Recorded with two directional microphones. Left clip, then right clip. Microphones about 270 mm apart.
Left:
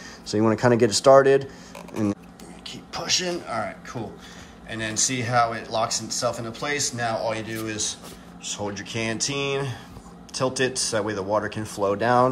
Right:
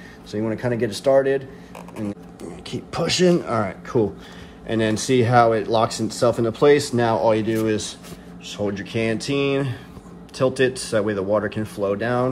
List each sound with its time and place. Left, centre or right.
0.3 s speech: left
2.7 s speech: right; by 12.3 s centre